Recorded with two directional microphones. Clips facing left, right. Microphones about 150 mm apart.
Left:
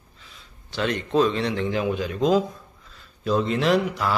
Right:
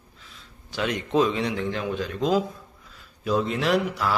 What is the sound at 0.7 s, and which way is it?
Speech, 10° right (ahead or behind).